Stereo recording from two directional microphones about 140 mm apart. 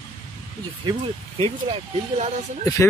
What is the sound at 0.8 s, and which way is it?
Speech, 40° right (ahead or behind).